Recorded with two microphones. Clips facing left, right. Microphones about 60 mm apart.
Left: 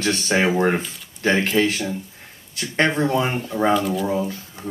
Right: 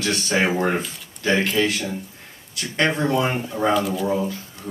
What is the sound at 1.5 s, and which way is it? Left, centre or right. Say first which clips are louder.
Speech: left 2 dB; left.